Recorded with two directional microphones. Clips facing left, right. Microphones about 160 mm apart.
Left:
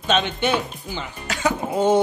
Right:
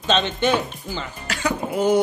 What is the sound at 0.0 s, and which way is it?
Speech, 10° left (ahead or behind).